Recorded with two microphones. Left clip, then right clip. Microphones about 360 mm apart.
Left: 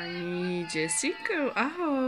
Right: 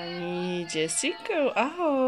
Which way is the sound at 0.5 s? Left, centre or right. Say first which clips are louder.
Right 2 dB; centre.